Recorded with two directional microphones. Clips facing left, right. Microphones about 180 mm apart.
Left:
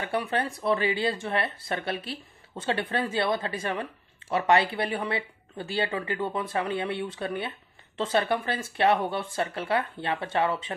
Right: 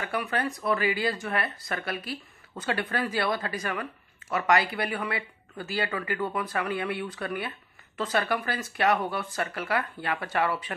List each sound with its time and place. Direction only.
0.0 s speech: 30° left (ahead or behind)